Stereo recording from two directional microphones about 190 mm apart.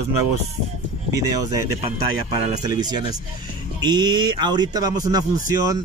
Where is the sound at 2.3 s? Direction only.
35° right (ahead or behind).